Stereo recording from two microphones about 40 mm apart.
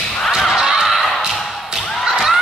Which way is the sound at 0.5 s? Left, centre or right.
Centre.